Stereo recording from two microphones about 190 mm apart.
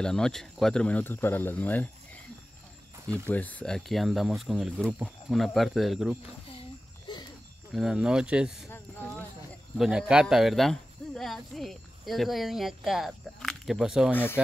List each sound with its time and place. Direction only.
0.0 s speech: 5° left (ahead or behind)
3.3 s speech: 10° left (ahead or behind)
7.1 s a sound: 25° left (ahead or behind)
7.7 s speech: 5° right (ahead or behind)
8.6 s a sound: 10° left (ahead or behind)
9.8 s speech: 5° right (ahead or behind)
14.1 s speech: 10° left (ahead or behind)